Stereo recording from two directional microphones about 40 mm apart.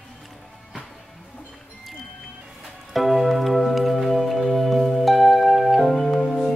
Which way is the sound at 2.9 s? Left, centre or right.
Centre.